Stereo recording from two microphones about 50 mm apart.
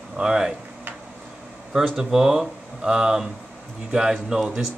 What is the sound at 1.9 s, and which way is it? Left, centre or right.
Speech, centre.